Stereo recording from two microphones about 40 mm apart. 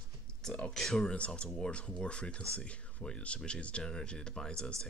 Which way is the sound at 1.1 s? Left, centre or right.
Left.